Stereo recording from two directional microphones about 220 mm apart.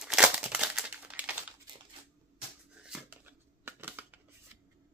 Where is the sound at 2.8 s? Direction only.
5° right (ahead or behind).